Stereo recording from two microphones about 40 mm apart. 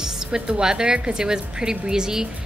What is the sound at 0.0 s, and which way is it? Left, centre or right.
A woman's voice, centre.